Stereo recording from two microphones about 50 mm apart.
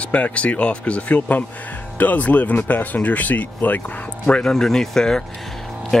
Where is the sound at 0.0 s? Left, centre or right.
Left.